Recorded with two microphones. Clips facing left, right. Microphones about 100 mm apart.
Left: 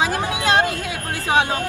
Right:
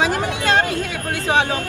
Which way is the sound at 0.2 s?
10° left (ahead or behind).